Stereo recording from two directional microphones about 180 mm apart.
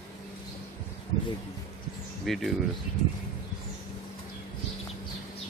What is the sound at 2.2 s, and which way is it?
Speech, centre (ahead or behind).